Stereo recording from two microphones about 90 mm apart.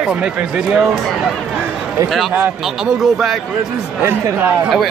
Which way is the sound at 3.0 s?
Centre (ahead or behind).